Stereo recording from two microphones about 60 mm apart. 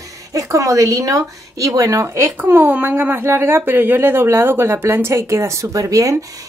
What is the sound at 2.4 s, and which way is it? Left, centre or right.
Speech, right.